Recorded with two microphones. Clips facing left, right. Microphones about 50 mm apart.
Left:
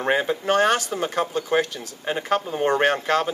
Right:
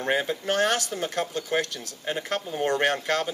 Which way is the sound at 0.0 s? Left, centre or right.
Centre.